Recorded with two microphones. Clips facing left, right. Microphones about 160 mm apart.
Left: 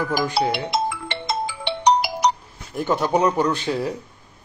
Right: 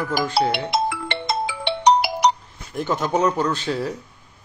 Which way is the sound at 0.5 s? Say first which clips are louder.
Right 1 dB; 65° right (ahead or behind).